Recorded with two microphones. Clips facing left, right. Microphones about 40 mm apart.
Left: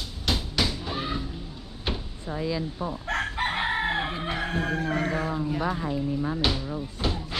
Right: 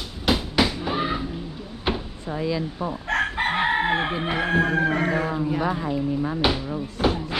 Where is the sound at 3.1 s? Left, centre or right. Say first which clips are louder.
Right 5 dB; right.